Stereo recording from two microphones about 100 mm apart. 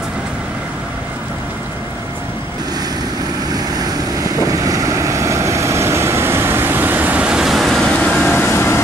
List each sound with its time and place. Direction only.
4.2 s vehicle: 35° right (ahead or behind); by 8.8 s 25° left (ahead or behind)